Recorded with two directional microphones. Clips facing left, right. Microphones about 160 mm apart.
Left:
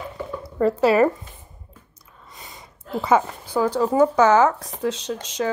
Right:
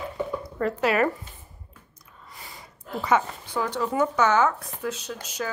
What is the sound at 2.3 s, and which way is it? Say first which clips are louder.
Speech: left 2 dB; 20° left (ahead or behind).